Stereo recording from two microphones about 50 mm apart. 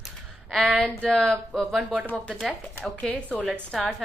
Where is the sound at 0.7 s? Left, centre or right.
Centre.